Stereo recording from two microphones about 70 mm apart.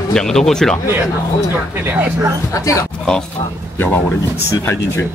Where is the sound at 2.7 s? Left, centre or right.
Left.